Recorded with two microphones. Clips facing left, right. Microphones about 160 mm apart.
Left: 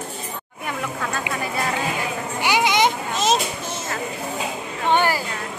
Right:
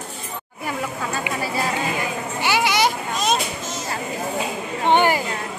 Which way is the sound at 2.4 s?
15° left (ahead or behind).